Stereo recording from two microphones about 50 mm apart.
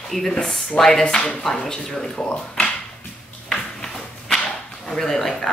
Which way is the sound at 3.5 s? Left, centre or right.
Centre.